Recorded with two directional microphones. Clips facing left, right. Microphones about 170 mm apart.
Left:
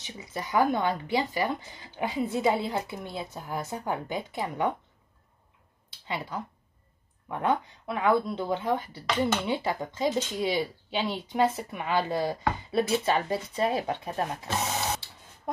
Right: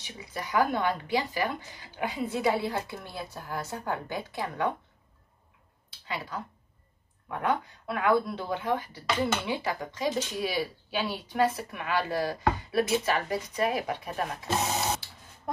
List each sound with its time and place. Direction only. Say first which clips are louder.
0.0 s speech: left 2 dB; 20° left (ahead or behind)
6.0 s speech: left 2 dB; 25° left (ahead or behind)